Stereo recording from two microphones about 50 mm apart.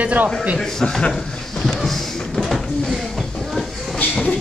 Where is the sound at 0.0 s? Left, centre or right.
Right.